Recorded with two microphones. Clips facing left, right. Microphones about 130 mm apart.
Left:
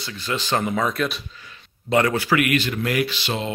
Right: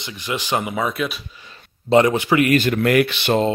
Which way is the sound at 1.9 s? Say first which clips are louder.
Right 4 dB; 20° right (ahead or behind).